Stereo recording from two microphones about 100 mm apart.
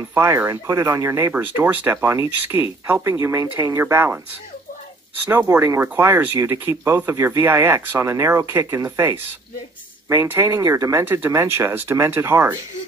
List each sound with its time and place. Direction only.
0.1 s speech: 25° right (ahead or behind)
1.3 s speech: 20° right (ahead or behind)
5.3 s speech: 25° right (ahead or behind)